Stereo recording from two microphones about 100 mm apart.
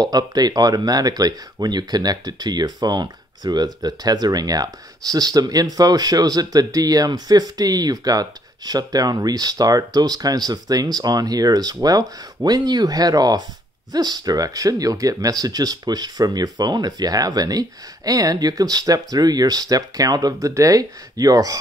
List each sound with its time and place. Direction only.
0.0 s speech: 40° right (ahead or behind)